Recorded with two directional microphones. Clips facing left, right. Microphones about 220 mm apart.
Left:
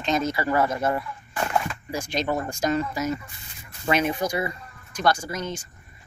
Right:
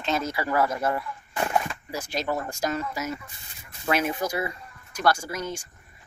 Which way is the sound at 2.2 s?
15° left (ahead or behind).